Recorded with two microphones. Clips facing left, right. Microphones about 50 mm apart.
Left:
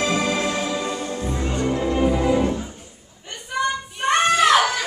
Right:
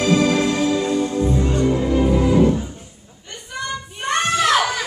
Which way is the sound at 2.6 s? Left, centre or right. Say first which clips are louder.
Right 2 dB; centre.